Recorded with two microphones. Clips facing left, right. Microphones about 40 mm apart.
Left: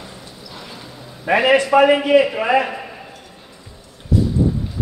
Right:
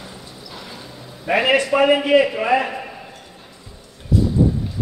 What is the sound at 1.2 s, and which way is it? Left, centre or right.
A man's voice, centre.